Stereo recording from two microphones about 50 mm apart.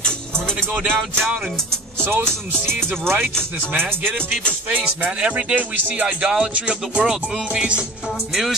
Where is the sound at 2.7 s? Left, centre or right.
Right.